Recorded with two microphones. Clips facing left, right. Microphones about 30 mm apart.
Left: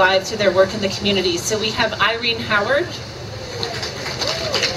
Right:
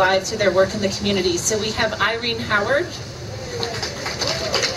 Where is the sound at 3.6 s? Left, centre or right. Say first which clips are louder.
Even; centre.